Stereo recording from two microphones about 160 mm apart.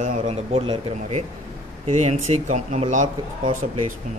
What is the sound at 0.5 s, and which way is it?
Speech, 35° right (ahead or behind).